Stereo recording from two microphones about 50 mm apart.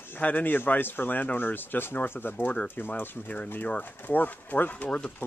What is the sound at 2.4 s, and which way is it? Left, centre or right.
Speech, left.